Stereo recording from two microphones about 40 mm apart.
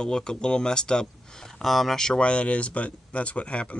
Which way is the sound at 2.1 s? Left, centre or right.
Left.